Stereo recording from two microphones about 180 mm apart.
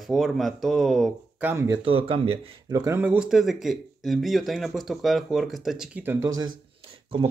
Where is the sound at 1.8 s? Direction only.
30° right (ahead or behind).